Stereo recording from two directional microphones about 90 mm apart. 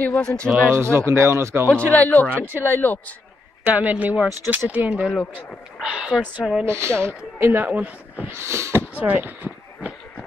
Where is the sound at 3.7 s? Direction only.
15° right (ahead or behind).